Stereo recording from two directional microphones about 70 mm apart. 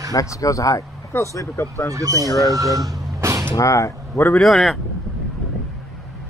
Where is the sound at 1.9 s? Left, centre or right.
Right.